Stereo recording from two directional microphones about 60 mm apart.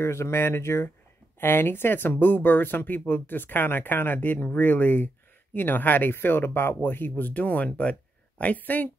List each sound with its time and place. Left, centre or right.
0.0 s speech: left